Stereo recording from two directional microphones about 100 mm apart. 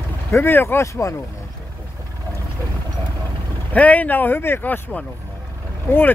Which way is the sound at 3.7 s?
15° left (ahead or behind).